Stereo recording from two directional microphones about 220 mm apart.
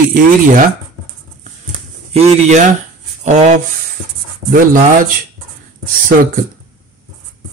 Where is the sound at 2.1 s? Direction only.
30° right (ahead or behind).